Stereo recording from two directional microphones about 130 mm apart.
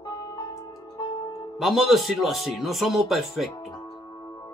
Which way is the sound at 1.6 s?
Centre (ahead or behind).